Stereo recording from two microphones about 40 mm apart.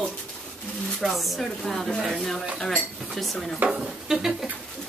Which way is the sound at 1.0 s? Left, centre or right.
Centre.